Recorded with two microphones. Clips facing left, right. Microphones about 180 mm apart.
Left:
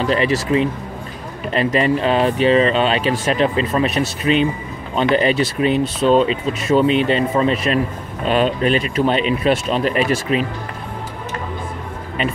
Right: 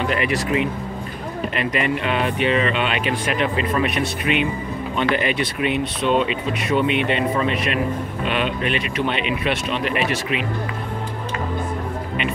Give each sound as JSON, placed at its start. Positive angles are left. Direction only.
{"t": 0.0, "sound": "speech", "side_deg": 30}